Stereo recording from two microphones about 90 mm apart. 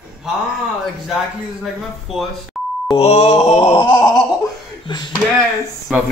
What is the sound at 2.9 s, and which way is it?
Groan, 85° left.